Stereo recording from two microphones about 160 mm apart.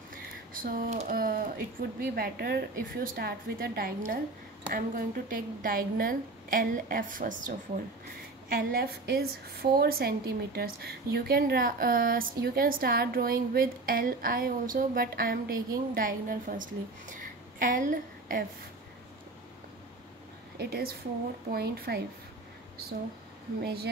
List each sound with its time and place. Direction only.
0.5 s a woman's voice: 60° right (ahead or behind)
1.1 s a woman's voice: 60° right (ahead or behind)
8.5 s a woman's voice: 70° right (ahead or behind)
20.5 s a woman's voice: 75° right (ahead or behind)
23.6 s speech: 85° right